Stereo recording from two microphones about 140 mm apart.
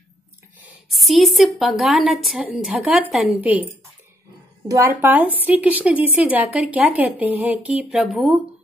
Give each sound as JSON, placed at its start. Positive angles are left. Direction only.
{"t": 0.9, "sound": "speech", "side_deg": 0}
{"t": 4.6, "sound": "speech", "side_deg": -20}
{"t": 5.1, "sound": "speech", "side_deg": -10}